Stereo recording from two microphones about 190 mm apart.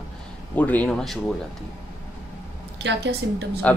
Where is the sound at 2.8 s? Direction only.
70° right (ahead or behind).